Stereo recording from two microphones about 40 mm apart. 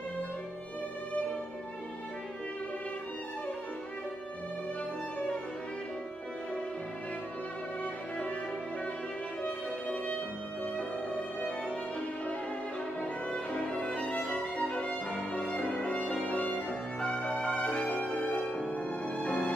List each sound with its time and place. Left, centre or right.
9.4 s music: left
13.0 s violin: left
17.0 s music: left
18.0 s music: left